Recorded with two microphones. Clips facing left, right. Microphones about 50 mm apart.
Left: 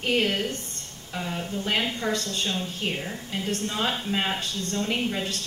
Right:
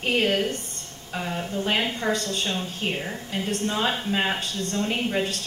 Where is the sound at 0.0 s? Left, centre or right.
Right.